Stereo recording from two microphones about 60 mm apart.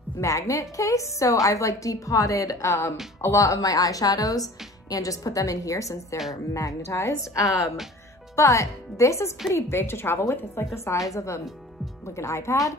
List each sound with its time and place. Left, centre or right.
0.2 s a woman's voice: left